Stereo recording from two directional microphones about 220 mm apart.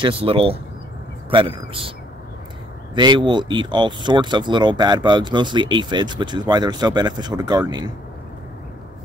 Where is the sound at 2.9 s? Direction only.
20° right (ahead or behind).